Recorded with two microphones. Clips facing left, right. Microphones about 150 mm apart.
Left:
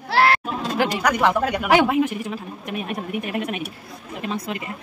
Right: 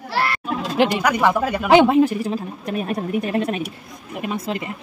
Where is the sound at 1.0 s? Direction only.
10° right (ahead or behind).